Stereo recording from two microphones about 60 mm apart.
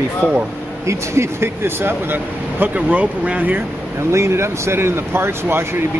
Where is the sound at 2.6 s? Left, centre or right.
Right.